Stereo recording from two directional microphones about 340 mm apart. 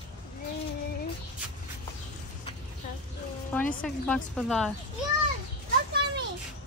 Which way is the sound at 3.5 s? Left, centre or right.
Centre.